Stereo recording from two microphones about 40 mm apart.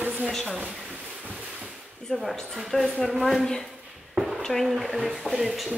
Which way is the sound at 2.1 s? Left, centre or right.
Centre.